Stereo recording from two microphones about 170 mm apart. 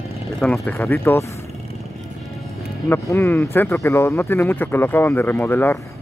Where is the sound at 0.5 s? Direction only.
15° left (ahead or behind).